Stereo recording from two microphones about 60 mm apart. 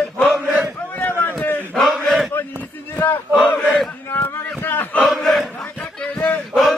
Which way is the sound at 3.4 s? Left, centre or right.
Left.